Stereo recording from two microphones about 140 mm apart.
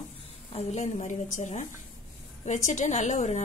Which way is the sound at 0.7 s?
55° left (ahead or behind).